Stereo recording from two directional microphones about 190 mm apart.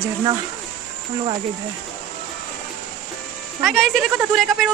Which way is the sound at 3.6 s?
Centre (ahead or behind).